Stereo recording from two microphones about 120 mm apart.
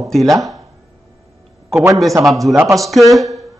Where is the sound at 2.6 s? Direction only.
25° right (ahead or behind).